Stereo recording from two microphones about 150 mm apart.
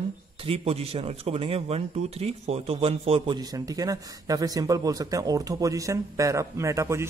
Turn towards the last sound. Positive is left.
turn(degrees=-20)  # may be behind; listen again after turning